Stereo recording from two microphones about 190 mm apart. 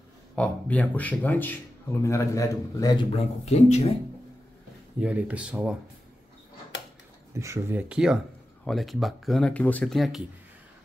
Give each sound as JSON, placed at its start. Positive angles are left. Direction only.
{"t": 0.4, "sound": "speech", "side_deg": 5}
{"t": 3.4, "sound": "speech", "side_deg": 35}
{"t": 5.0, "sound": "speech", "side_deg": -5}
{"t": 7.3, "sound": "speech", "side_deg": -15}
{"t": 7.9, "sound": "speech", "side_deg": -5}